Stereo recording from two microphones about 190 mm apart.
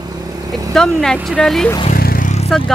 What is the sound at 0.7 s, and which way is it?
Speech, 5° left (ahead or behind).